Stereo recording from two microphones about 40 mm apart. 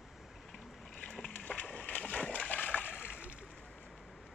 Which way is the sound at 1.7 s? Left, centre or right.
Left.